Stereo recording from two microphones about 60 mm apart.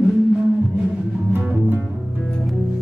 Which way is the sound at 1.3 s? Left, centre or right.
Right.